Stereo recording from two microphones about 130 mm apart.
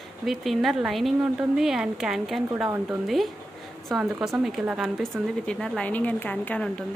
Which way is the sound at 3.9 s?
Centre (ahead or behind).